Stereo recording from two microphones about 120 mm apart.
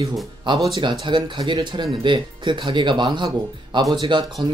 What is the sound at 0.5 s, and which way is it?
Speech, 40° right (ahead or behind).